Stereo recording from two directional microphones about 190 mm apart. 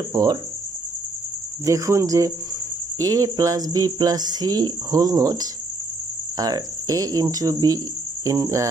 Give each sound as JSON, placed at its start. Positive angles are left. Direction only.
{"t": 0.1, "sound": "speech", "side_deg": -20}
{"t": 1.7, "sound": "speech", "side_deg": -15}